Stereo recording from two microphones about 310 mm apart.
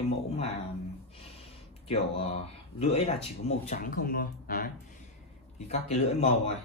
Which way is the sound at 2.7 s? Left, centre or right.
Centre.